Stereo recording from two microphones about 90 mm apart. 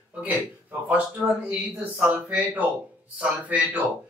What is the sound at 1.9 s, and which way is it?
A man's voice, 15° right (ahead or behind).